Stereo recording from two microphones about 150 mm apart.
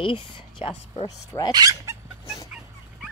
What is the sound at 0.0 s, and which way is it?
Speech, 35° left (ahead or behind).